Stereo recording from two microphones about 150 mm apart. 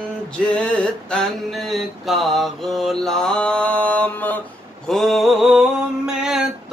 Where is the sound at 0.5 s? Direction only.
5° left (ahead or behind).